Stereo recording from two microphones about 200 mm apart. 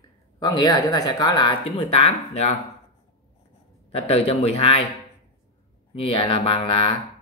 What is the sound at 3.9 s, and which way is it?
Speech, 30° left (ahead or behind).